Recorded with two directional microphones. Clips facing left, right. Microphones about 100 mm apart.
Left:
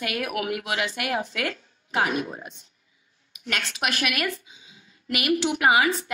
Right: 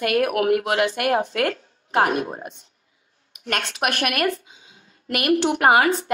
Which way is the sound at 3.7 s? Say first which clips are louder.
Right 4 dB; 50° right (ahead or behind).